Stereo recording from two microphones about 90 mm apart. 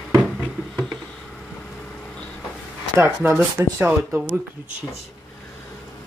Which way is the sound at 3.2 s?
25° right (ahead or behind).